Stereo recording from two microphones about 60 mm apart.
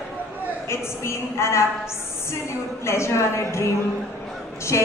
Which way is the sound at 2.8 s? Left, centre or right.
Left.